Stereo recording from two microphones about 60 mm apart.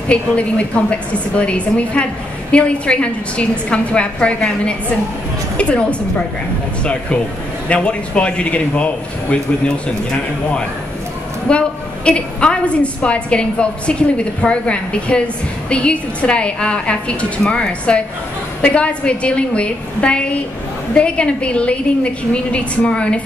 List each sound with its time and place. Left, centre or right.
0.1 s a woman's voice: centre
11.4 s a woman's voice: centre